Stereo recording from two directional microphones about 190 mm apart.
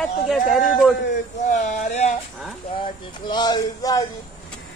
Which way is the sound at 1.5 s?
40° left (ahead or behind).